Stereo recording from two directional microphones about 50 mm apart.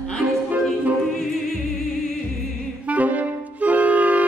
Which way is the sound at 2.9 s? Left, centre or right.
Right.